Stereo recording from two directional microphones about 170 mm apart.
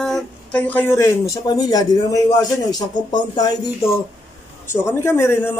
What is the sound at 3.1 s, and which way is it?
A man's voice, 25° left (ahead or behind).